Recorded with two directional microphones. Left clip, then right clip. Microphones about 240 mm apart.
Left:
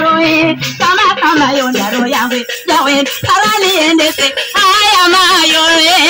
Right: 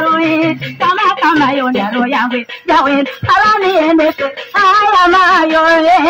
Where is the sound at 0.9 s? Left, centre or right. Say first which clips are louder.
Left 2 dB; centre.